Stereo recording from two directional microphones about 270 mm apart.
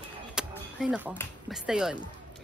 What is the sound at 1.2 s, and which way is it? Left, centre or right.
Speech, centre.